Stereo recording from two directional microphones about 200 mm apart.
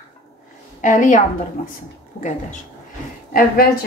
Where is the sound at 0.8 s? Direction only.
40° left (ahead or behind).